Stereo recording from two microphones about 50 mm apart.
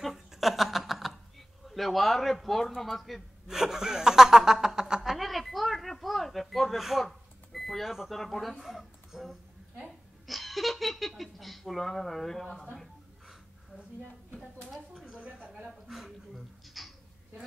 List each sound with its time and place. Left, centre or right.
0.0 s snicker: centre
1.7 s a man's voice: centre
5.1 s a sound: centre
8.5 s speech: centre
12.7 s a sound: centre
15.1 s a woman's voice: right
15.9 s speech: centre